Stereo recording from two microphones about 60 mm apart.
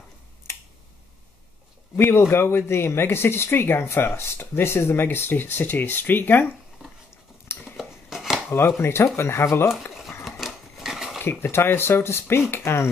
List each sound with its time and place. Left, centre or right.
2.0 s speech: left
7.7 s scissors: centre
8.5 s speech: left
9.9 s dog: centre
11.2 s speech: left